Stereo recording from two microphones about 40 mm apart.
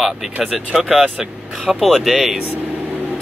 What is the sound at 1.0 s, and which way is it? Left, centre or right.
Speech, right.